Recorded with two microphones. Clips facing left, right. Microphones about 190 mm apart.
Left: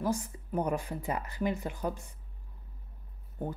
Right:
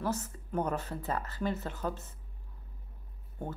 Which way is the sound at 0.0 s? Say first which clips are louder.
Left 2 dB; 10° left (ahead or behind).